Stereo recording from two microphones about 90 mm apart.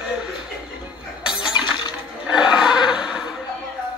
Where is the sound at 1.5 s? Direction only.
55° left (ahead or behind).